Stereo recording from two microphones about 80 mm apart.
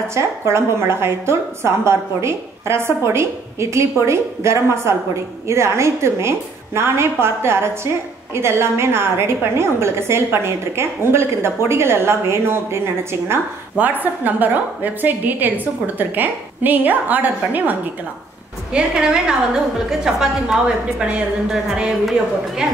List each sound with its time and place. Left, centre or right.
0.1 s a woman's voice: right
13.7 s a woman's voice: right
18.7 s a woman's voice: centre